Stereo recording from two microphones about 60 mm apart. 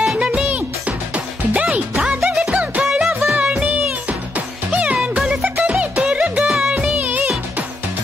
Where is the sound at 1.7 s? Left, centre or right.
Centre.